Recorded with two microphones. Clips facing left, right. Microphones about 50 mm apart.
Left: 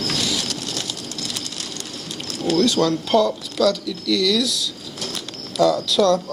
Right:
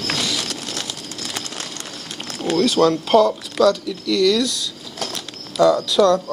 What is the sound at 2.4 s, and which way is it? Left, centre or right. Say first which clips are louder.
Speech: right 2 dB; right.